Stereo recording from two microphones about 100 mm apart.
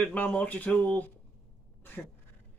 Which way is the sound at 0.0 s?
15° left (ahead or behind).